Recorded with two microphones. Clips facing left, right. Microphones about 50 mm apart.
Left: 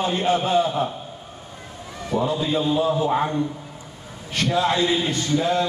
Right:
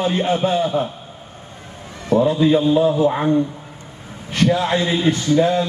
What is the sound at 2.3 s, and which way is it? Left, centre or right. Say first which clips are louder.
Speech: right 8 dB; right.